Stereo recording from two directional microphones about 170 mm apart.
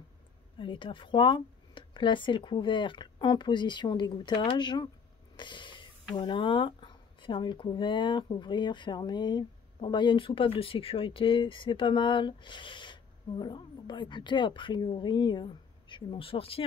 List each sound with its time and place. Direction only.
0.6 s speech: 30° left (ahead or behind)